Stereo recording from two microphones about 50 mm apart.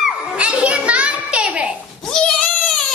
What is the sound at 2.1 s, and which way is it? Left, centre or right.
Goat, centre.